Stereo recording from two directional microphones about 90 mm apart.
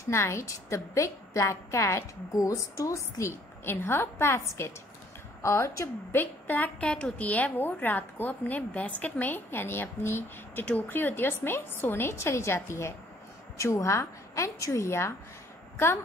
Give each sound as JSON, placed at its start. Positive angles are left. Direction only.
{"t": 0.0, "sound": "a woman's voice", "side_deg": 30}
{"t": 6.4, "sound": "a woman's voice", "side_deg": 20}